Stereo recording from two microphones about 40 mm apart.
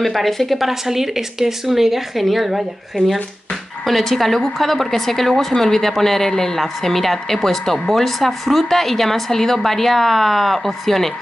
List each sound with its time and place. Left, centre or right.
0.0 s speech: centre
0.7 s a woman's voice: centre
3.0 s speech: left
3.8 s a woman's voice: centre